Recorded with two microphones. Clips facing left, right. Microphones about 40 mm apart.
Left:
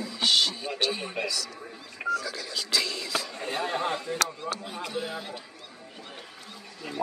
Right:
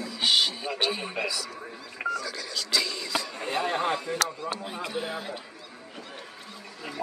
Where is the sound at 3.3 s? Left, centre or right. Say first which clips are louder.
Right 4 dB; centre.